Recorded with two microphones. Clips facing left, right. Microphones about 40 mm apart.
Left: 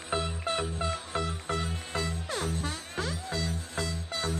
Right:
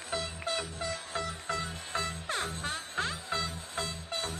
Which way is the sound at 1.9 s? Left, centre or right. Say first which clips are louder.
Even; right.